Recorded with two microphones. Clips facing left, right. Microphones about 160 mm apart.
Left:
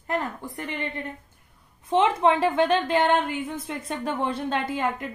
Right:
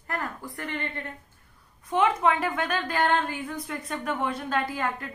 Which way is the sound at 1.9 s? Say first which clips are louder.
Left 3 dB; 30° left (ahead or behind).